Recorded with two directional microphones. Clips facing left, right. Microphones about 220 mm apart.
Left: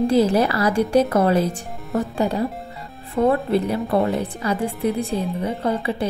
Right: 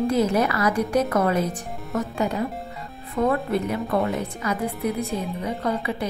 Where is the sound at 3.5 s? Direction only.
35° left (ahead or behind).